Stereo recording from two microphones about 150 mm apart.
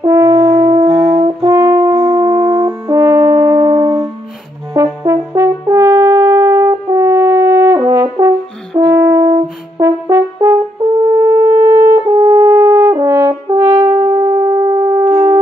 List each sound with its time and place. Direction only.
0.0 s french horn: 20° right (ahead or behind)
1.5 s brass instrument: 20° right (ahead or behind)
4.7 s french horn: 20° right (ahead or behind)
13.7 s wind instrument: 30° right (ahead or behind)